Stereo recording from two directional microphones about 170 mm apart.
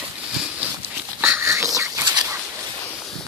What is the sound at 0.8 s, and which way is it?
Dog, 10° right (ahead or behind).